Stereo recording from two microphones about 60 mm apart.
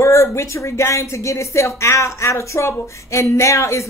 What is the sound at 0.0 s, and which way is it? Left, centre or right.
Speech, left.